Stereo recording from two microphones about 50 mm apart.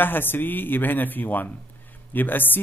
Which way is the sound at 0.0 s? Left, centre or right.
Left.